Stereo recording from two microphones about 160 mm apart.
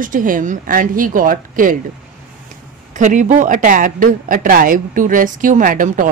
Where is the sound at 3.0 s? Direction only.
50° right (ahead or behind).